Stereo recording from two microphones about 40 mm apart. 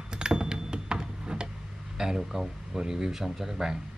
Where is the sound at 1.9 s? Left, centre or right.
Centre.